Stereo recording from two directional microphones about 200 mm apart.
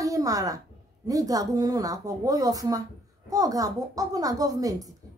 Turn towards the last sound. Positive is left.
turn(degrees=-15)  # may be behind; listen again after turning